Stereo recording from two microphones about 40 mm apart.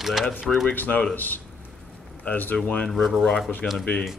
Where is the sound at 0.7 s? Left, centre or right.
Left.